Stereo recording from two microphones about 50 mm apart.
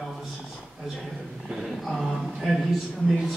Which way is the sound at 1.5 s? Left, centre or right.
Centre.